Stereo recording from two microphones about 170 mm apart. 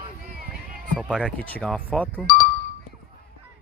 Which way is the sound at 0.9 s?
5° right (ahead or behind).